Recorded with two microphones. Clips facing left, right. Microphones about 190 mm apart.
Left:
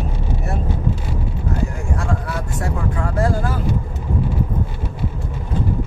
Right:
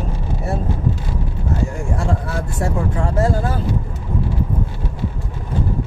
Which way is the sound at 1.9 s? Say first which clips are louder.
Right 1 dB; 25° right (ahead or behind).